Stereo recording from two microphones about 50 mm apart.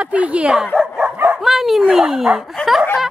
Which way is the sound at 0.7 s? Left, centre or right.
Centre.